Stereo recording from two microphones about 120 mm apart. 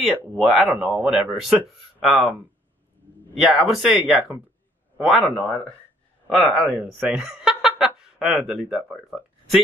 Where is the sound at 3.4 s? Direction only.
Centre (ahead or behind).